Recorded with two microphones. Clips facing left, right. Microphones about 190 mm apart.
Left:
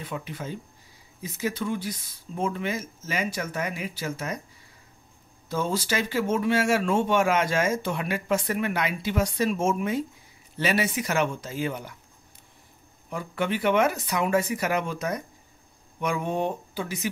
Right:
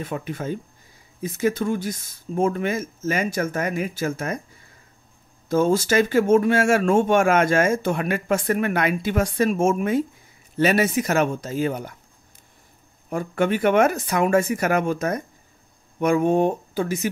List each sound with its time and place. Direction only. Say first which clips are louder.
0.0 s speech: right 6 dB; 50° right (ahead or behind)
5.5 s speech: right 8 dB; 45° right (ahead or behind)
13.1 s speech: right 6 dB; 50° right (ahead or behind)